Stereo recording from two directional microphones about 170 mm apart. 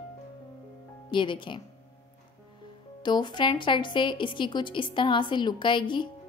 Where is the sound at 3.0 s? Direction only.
25° left (ahead or behind).